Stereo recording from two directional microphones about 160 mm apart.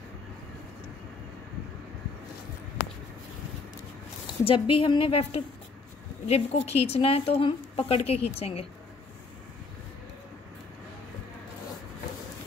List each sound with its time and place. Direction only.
4.5 s a woman's voice: 35° left (ahead or behind)